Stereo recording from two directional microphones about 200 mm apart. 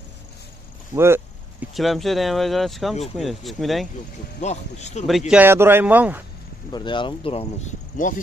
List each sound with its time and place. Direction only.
0.9 s a sound: 10° right (ahead or behind)
1.7 s speech: centre (ahead or behind)
4.4 s speech: 35° left (ahead or behind)
5.3 s a man's voice: 10° right (ahead or behind)
6.7 s speech: 25° left (ahead or behind)